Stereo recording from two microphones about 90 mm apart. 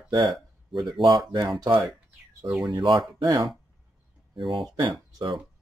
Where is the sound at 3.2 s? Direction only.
40° right (ahead or behind).